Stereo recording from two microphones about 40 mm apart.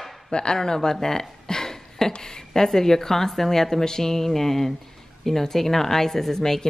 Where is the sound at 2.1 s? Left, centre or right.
Centre.